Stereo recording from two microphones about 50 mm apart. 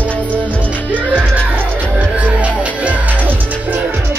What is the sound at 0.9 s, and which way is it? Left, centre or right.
Music, right.